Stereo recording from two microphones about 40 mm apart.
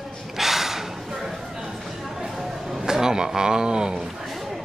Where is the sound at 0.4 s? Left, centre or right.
Centre.